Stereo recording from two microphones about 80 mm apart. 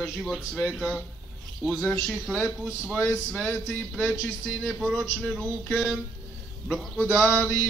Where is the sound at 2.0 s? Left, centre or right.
Centre.